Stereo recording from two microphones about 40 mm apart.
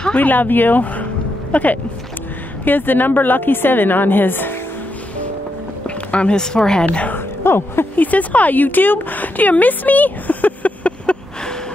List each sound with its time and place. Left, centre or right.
0.1 s speech: left
2.6 s a woman's voice: left
5.9 s a sound: left
6.3 s speech: centre
6.9 s a woman's voice: left
7.4 s speech: left
7.9 s a woman's voice: left